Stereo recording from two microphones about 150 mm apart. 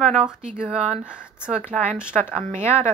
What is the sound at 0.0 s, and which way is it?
Speech, 5° right (ahead or behind).